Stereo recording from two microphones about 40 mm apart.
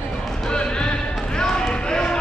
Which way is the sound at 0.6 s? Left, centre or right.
Left.